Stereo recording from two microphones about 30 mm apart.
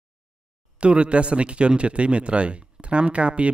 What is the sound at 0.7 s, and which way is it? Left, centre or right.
Speech, right.